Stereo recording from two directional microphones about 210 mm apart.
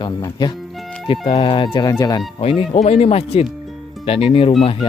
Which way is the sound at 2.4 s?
30° left (ahead or behind).